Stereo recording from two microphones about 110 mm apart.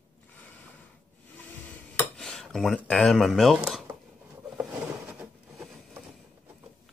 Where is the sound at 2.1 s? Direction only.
5° left (ahead or behind).